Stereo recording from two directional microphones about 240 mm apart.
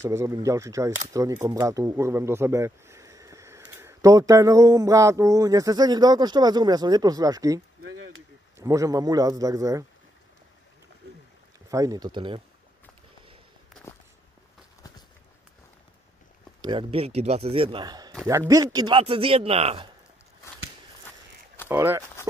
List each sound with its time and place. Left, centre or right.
0.0 s speech: centre
7.8 s a sound: right
8.5 s speech: centre
11.7 s speech: centre
16.6 s a man's voice: right
21.6 s speech: centre